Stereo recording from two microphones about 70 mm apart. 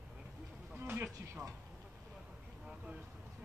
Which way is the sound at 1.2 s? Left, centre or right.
Right.